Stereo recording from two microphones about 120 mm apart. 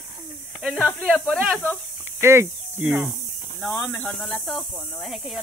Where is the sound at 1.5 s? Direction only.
10° left (ahead or behind).